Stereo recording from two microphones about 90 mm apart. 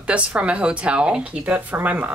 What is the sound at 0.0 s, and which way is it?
Speech, 15° right (ahead or behind).